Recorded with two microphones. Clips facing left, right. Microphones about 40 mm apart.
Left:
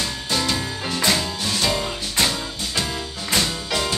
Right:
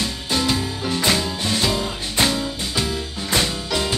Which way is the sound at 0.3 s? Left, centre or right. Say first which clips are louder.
Right 2 dB; centre.